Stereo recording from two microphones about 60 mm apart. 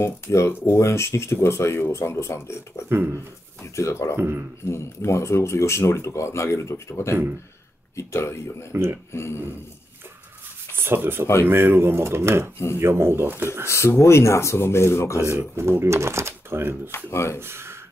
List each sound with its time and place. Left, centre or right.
0.0 s speech: left
0.5 s speech: left
2.9 s speech: right
3.7 s speech: left
4.2 s speech: right
4.6 s speech: left
10.7 s speech: right
13.7 s speech: left
15.2 s speech: right
16.9 s speech: left
17.4 s speech: right